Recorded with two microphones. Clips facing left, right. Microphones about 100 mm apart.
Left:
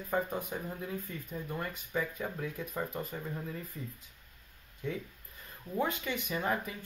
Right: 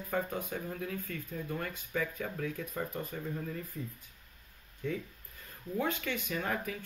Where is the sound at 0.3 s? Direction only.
10° left (ahead or behind).